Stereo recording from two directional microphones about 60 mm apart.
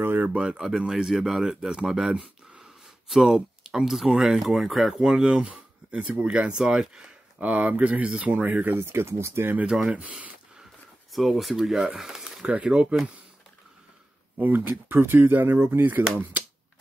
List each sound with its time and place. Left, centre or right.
0.0 s a sound: right
0.3 s speech: centre
4.9 s speech: centre
7.3 s speech: right
8.9 s speech: right
9.8 s speech: right
11.1 s speech: centre
14.3 s speech: right